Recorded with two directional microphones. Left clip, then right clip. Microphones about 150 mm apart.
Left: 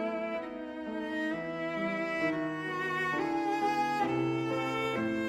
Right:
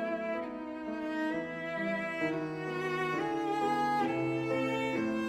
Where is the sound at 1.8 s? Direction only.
40° right (ahead or behind).